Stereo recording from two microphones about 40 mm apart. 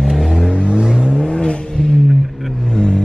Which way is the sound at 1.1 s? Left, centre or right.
Left.